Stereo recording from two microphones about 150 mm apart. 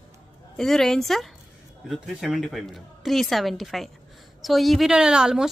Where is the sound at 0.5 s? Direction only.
5° left (ahead or behind).